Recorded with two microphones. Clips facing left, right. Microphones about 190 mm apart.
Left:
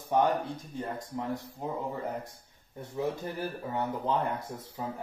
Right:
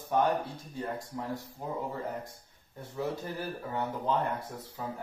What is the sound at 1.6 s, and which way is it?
Speech, 20° left (ahead or behind).